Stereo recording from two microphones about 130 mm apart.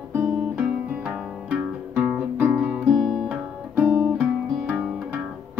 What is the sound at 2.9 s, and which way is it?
Guitar, centre (ahead or behind).